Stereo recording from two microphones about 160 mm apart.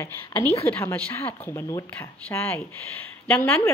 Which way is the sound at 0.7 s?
10° left (ahead or behind).